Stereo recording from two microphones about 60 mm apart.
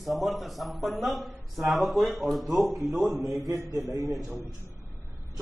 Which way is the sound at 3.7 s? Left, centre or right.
Right.